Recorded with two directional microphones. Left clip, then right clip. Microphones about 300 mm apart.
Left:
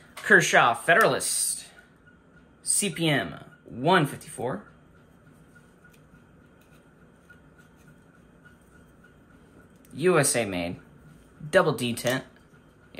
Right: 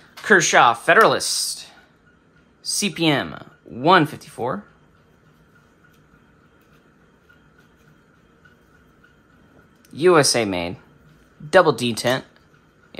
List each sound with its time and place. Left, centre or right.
0.2 s speech: centre
9.9 s speech: centre